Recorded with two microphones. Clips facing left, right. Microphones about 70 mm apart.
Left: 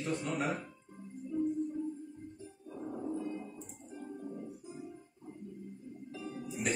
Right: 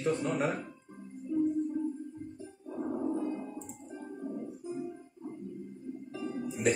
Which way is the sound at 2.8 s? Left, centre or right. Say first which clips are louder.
Right 7 dB; right.